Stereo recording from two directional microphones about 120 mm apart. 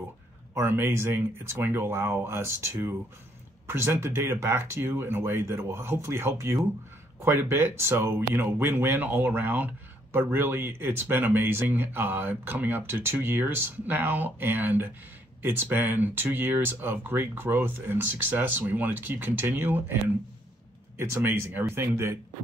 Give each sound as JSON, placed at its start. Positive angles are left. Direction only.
{"t": 0.6, "sound": "speech", "side_deg": -20}
{"t": 21.0, "sound": "speech", "side_deg": -20}